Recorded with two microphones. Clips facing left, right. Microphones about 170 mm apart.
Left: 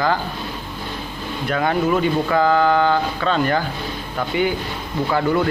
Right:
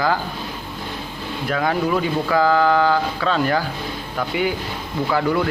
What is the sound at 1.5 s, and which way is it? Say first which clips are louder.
Speech: left 1 dB; centre (ahead or behind).